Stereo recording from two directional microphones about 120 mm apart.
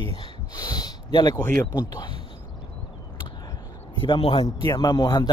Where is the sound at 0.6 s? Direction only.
35° left (ahead or behind).